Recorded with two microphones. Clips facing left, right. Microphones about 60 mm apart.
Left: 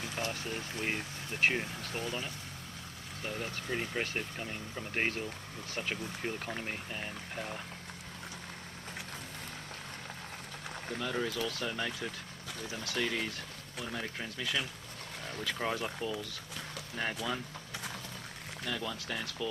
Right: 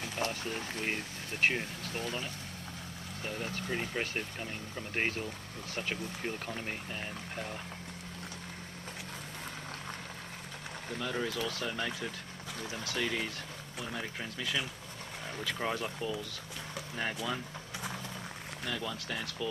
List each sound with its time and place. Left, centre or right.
0.3 s speech: centre
3.3 s speech: centre
10.9 s speech: centre
18.7 s speech: centre